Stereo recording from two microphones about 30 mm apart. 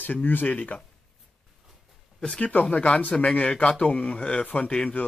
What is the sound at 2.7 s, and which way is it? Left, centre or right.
Speech, left.